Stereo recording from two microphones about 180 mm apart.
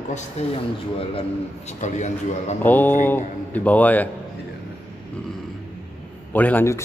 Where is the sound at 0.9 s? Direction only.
35° left (ahead or behind).